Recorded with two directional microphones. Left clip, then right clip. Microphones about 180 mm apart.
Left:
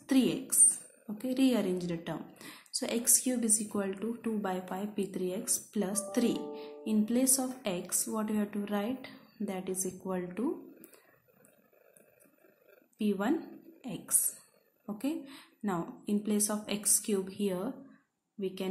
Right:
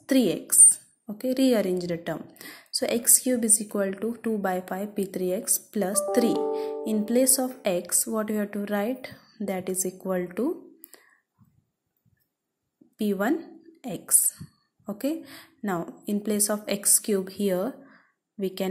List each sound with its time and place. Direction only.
0.0 s a woman's voice: 35° right (ahead or behind)
12.9 s a woman's voice: 35° right (ahead or behind)